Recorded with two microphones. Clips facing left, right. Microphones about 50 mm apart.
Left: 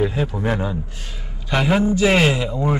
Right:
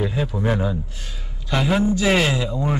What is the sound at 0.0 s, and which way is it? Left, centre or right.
Speech, left.